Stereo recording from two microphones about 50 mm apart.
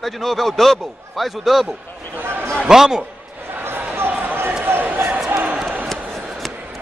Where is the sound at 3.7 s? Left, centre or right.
Right.